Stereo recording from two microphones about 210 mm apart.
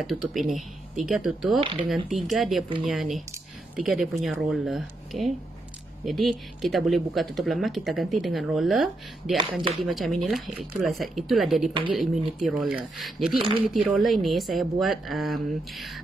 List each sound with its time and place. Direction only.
0.0 s speech: centre (ahead or behind)
1.6 s speech: 25° right (ahead or behind)
2.0 s speech: centre (ahead or behind)
13.4 s speech: 25° right (ahead or behind)
13.7 s speech: centre (ahead or behind)